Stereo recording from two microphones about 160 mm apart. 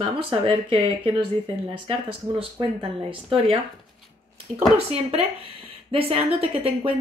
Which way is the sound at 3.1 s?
35° right (ahead or behind).